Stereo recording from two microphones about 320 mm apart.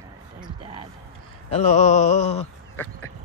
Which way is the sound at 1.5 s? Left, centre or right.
Left.